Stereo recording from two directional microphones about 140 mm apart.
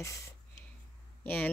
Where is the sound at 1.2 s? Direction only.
15° left (ahead or behind).